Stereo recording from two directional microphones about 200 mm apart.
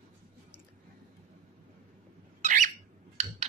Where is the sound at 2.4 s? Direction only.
40° right (ahead or behind).